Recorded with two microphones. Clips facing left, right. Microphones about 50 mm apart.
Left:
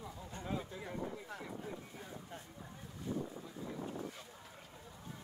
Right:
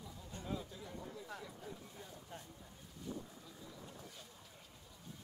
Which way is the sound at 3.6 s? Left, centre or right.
Left.